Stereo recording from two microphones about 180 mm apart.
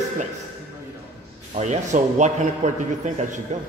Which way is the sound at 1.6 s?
40° right (ahead or behind).